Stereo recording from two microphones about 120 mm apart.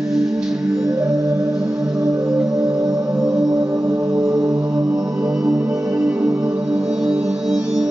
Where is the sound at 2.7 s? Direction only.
30° right (ahead or behind).